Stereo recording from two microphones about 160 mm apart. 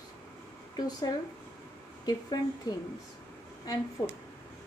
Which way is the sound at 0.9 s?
25° left (ahead or behind).